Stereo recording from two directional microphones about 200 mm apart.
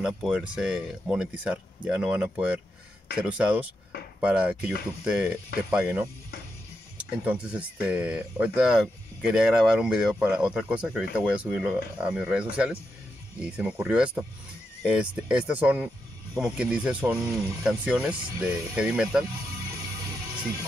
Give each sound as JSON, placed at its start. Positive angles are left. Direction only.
{"t": 0.0, "sound": "speech", "side_deg": -5}
{"t": 17.2, "sound": "speech", "side_deg": -20}
{"t": 17.6, "sound": "speech", "side_deg": -5}
{"t": 19.2, "sound": "music", "side_deg": -20}